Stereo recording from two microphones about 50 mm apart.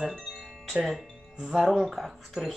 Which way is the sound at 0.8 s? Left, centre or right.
Centre.